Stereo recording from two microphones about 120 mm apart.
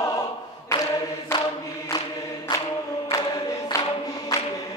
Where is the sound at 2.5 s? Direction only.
40° left (ahead or behind).